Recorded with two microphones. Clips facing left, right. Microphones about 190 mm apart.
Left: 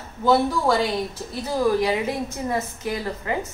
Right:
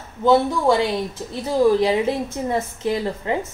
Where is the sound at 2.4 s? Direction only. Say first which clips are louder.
Right 4 dB; 25° right (ahead or behind).